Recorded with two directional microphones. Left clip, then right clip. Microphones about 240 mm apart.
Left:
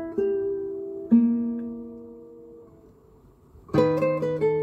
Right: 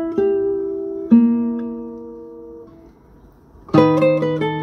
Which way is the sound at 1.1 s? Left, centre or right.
Centre.